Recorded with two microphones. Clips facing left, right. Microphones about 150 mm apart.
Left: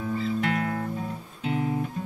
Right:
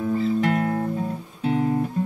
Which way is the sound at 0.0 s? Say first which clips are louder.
Right 5 dB; 40° right (ahead or behind).